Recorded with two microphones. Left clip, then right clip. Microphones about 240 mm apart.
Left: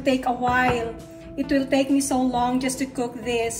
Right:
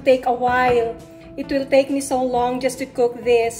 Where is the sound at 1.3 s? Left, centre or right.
Left.